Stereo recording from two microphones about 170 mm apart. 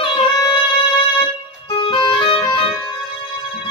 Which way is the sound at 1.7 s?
30° left (ahead or behind).